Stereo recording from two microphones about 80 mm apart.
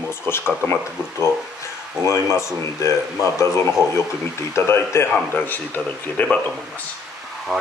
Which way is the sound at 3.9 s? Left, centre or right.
Left.